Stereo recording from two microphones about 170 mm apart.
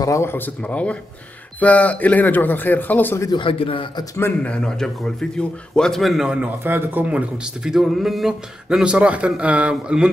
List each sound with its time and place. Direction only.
0.0 s speech: 15° left (ahead or behind)
3.3 s a man's voice: 30° left (ahead or behind)
4.2 s a man's voice: 5° left (ahead or behind)